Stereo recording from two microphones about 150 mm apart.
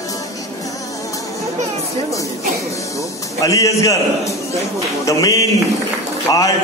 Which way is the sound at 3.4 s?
20° left (ahead or behind).